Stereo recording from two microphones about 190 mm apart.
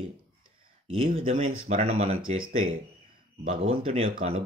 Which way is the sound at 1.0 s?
35° right (ahead or behind).